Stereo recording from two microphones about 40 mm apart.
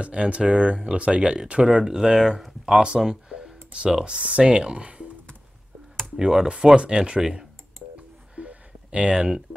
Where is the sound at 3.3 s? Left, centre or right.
Right.